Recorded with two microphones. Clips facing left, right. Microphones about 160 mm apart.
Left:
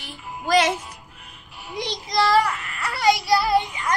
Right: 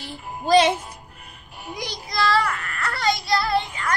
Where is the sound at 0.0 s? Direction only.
30° right (ahead or behind).